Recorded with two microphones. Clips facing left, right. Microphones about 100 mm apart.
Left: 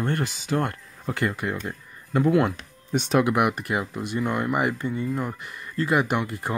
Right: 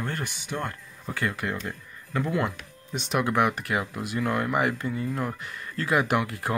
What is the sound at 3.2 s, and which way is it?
Speech, 10° left (ahead or behind).